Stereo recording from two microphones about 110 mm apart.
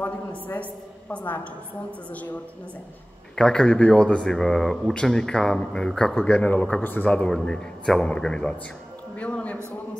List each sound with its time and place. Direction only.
0.0 s speech: 15° left (ahead or behind)
3.3 s speech: 5° left (ahead or behind)
9.1 s a sound: 10° left (ahead or behind)